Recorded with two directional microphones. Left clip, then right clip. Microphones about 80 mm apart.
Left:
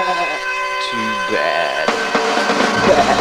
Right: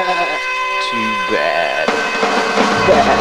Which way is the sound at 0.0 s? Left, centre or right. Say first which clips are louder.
Right 2 dB; right.